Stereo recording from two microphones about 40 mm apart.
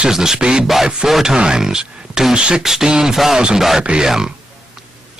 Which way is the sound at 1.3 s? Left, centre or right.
Centre.